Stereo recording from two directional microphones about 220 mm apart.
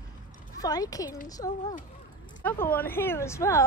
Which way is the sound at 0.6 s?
15° left (ahead or behind).